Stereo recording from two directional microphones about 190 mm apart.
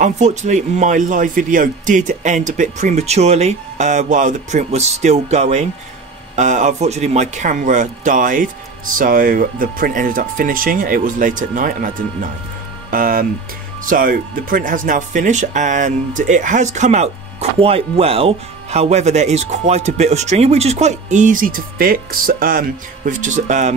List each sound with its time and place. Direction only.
0.0 s speech: 40° right (ahead or behind)